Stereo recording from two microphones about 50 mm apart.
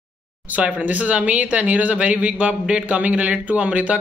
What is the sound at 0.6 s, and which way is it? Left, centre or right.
Speech, right.